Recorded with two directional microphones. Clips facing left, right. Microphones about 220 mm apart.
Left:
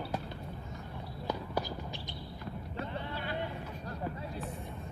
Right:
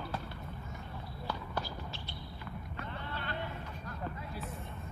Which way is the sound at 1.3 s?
15° left (ahead or behind).